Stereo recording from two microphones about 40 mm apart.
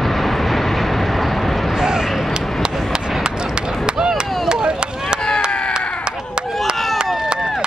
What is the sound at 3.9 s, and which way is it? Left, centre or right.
Chop, centre.